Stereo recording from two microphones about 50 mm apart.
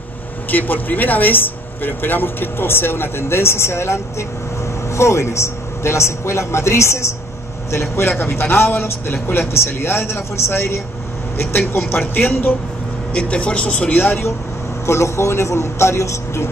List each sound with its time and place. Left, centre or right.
0.5 s speech: left
8.2 s speech: left
12.1 s speech: left
13.1 s speech: left
14.0 s speech: left
14.9 s speech: left